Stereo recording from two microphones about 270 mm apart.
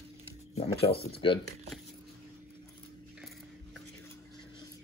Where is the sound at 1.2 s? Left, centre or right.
Centre.